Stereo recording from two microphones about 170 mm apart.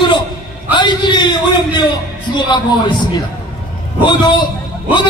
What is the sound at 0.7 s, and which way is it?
A man's voice, 25° left (ahead or behind).